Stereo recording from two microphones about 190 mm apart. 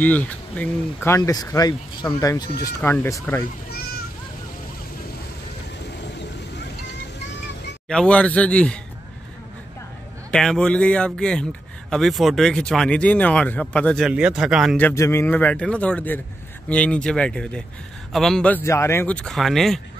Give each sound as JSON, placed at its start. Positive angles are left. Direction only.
{"t": 0.0, "sound": "speech", "side_deg": 10}
{"t": 5.9, "sound": "vehicle", "side_deg": 65}
{"t": 7.9, "sound": "speech", "side_deg": 5}
{"t": 10.3, "sound": "speech", "side_deg": 5}
{"t": 14.8, "sound": "speech", "side_deg": 10}